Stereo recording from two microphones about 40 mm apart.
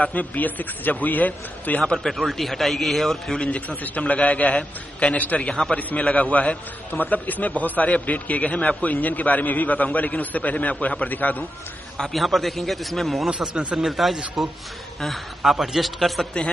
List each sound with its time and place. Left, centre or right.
0.0 s a man's voice: left
2.0 s a man's voice: centre
3.4 s a man's voice: left
6.9 s a man's voice: left
12.1 s a man's voice: centre
13.3 s speech: right
13.7 s a man's voice: centre